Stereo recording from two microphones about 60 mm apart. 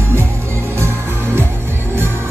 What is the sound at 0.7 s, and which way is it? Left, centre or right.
Music, right.